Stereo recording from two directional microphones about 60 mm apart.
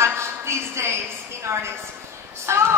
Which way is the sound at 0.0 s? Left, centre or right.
Right.